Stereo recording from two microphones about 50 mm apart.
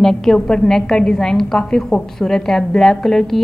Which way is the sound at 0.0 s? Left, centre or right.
Centre.